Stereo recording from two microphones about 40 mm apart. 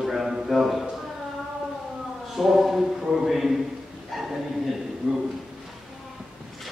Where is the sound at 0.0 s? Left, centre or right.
Centre.